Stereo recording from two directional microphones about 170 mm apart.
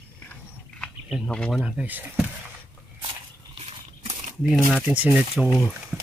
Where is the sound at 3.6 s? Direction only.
35° right (ahead or behind).